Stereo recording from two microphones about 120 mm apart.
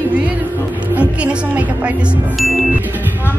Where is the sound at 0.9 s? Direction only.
10° right (ahead or behind).